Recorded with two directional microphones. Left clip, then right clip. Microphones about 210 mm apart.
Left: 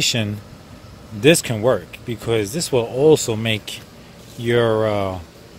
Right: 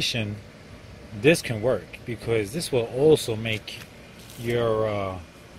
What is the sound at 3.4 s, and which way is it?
Speech, 15° left (ahead or behind).